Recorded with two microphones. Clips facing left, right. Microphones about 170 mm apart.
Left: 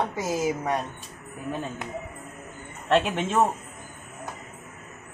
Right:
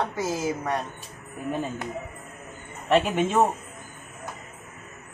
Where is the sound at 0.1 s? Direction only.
20° left (ahead or behind).